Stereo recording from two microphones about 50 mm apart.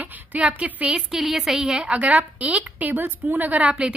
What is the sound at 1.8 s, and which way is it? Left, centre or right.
A woman's voice, right.